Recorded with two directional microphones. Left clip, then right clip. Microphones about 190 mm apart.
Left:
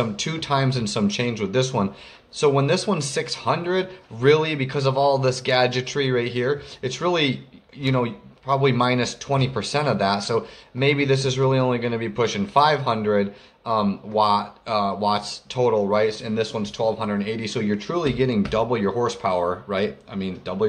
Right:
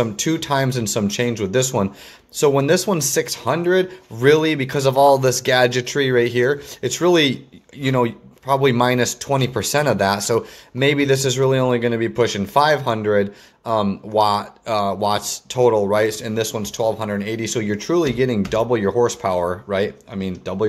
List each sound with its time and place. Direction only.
0.0 s speech: 40° right (ahead or behind)